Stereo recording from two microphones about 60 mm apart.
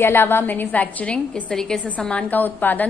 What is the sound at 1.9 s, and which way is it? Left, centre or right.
Speech, left.